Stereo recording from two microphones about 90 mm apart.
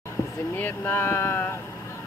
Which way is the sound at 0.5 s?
25° left (ahead or behind).